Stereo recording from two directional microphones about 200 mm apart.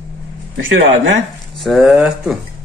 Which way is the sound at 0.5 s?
70° right (ahead or behind).